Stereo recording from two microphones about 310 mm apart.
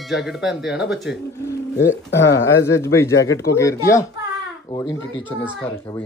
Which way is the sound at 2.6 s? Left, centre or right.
Centre.